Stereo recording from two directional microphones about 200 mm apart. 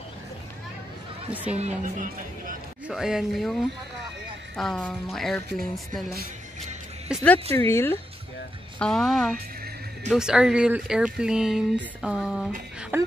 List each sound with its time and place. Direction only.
1.3 s speech: 5° right (ahead or behind)
1.6 s speech: 35° right (ahead or behind)
2.9 s speech: centre (ahead or behind)
4.6 s speech: 5° left (ahead or behind)
7.1 s speech: 5° right (ahead or behind)
7.5 s speech: 10° left (ahead or behind)
12.9 s speech: 10° right (ahead or behind)